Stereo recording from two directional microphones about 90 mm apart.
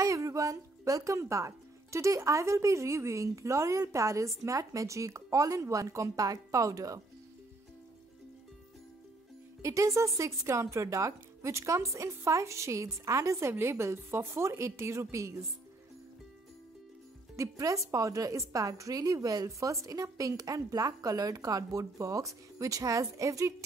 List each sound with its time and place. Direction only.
0.0 s speech: 35° right (ahead or behind)
9.6 s speech: 35° right (ahead or behind)
17.4 s speech: 35° right (ahead or behind)